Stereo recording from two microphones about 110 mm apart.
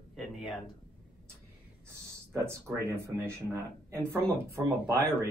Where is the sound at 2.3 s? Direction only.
25° right (ahead or behind).